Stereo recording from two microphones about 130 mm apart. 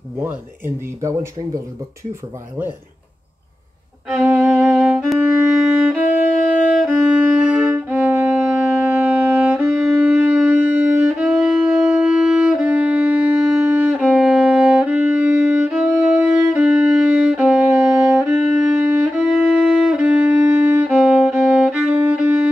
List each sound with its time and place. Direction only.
1.0 s speech: 25° right (ahead or behind)
4.1 s violin: 15° right (ahead or behind)
6.0 s music: 70° left (ahead or behind)
6.8 s music: 10° right (ahead or behind)
21.0 s music: 5° right (ahead or behind)